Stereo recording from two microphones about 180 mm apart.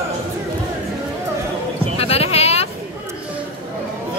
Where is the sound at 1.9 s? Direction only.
35° left (ahead or behind).